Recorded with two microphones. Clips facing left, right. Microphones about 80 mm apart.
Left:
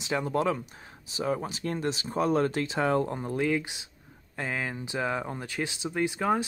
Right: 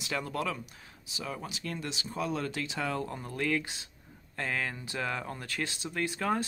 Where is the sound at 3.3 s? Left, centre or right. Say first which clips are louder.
Left 3 dB; centre.